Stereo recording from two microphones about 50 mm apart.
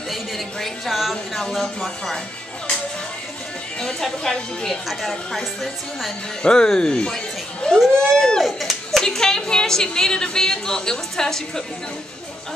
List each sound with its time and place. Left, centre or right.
0.1 s a woman's voice: centre
3.8 s a woman's voice: centre
4.8 s a woman's voice: centre
6.4 s a woman's voice: centre
9.0 s a woman's voice: centre